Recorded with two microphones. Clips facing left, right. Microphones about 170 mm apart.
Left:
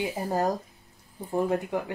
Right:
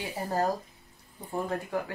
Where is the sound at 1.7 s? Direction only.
20° left (ahead or behind).